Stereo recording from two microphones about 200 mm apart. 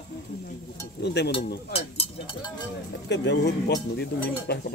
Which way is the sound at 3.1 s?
60° left (ahead or behind).